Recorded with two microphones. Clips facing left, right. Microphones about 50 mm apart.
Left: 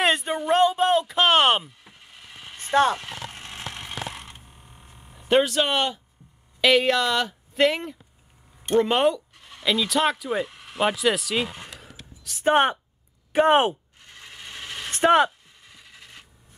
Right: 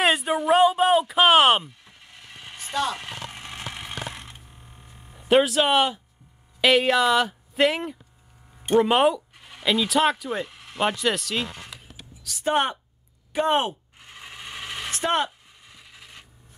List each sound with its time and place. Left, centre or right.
0.0 s a sound: centre
2.7 s speech: left
3.0 s vehicle: centre
4.9 s speech: centre
12.2 s speech: left
13.9 s a sound: centre
15.6 s wood: centre